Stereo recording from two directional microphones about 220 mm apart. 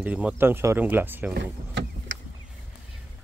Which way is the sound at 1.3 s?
50° right (ahead or behind).